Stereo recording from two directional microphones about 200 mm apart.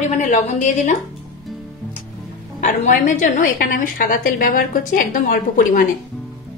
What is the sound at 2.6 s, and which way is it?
A woman's voice, 40° left (ahead or behind).